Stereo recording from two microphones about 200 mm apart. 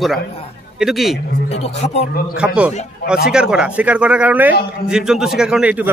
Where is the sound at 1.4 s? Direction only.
30° left (ahead or behind).